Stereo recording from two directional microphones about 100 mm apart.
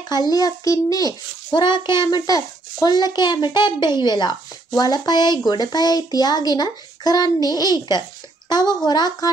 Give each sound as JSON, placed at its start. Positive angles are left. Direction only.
{"t": 0.1, "sound": "a child's voice", "side_deg": 40}
{"t": 1.5, "sound": "a child's voice", "side_deg": 50}